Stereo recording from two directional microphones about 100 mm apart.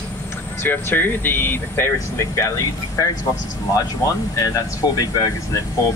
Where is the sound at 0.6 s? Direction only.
20° left (ahead or behind).